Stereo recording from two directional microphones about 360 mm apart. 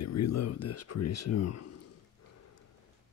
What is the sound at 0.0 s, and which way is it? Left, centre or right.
Speech, left.